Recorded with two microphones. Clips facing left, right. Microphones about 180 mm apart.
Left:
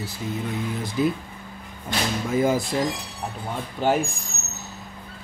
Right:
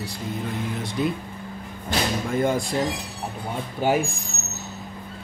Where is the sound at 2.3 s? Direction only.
5° left (ahead or behind).